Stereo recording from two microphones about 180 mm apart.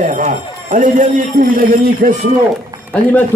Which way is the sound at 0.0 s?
45° right (ahead or behind).